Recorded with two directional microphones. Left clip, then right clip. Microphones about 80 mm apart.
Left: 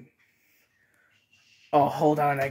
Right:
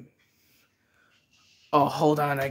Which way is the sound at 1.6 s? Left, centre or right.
Right.